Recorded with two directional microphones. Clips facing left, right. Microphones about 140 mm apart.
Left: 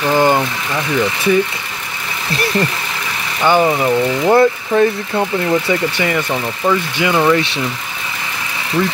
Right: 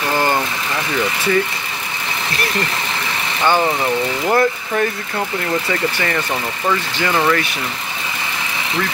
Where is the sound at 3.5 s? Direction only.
15° left (ahead or behind).